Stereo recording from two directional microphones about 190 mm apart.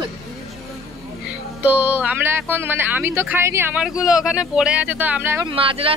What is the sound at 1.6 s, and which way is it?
Speech, 10° right (ahead or behind).